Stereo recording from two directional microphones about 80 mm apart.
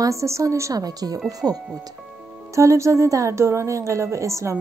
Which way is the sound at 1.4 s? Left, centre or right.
Centre.